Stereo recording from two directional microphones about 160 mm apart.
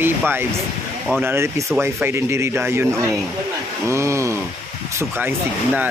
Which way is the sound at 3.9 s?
20° right (ahead or behind).